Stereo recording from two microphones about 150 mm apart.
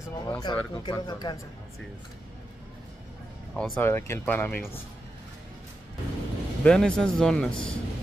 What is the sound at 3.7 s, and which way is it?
Speech, 15° left (ahead or behind).